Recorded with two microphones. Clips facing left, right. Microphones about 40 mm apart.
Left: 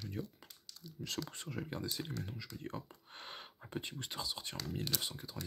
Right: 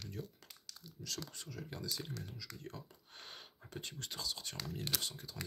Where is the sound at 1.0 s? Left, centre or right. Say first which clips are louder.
Left 4 dB; left.